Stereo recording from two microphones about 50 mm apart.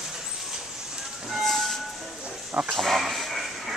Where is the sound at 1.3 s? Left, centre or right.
Centre.